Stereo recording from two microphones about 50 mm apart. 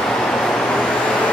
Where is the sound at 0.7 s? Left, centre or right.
Centre.